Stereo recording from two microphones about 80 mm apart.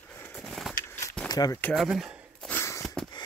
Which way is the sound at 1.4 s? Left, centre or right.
Left.